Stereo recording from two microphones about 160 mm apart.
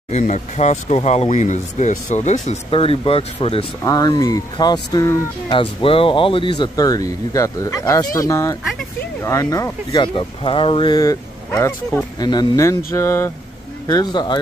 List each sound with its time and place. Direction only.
0.1 s speech: 45° left (ahead or behind)
3.8 s speech: 25° left (ahead or behind)
5.5 s speech: 35° left (ahead or behind)
10.0 s speech: 30° left (ahead or behind)